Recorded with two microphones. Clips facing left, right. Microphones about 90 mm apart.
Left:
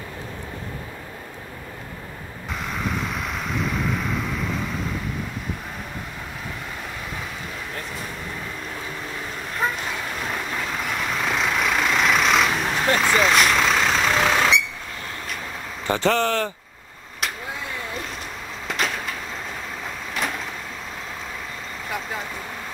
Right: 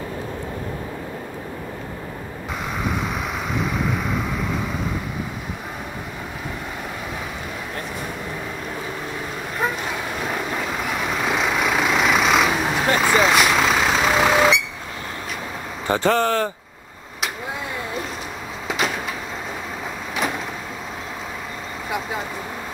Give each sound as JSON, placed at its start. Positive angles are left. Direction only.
{"t": 3.5, "sound": "vehicle", "side_deg": -5}
{"t": 10.2, "sound": "vehicle", "side_deg": -5}
{"t": 15.9, "sound": "speech", "side_deg": -20}
{"t": 18.7, "sound": "a sound", "side_deg": -5}